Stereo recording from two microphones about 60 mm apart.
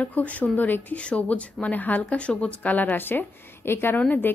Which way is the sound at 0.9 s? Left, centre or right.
Centre.